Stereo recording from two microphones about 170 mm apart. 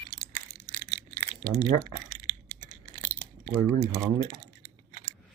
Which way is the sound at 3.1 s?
15° right (ahead or behind).